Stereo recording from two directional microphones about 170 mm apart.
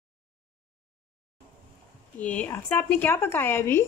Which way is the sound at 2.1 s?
10° left (ahead or behind).